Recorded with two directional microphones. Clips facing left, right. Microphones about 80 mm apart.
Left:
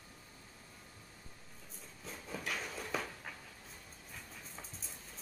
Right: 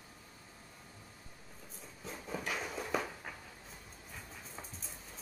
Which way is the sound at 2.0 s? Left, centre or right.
Centre.